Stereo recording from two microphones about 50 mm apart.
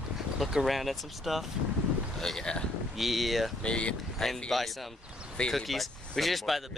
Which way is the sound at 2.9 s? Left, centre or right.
Centre.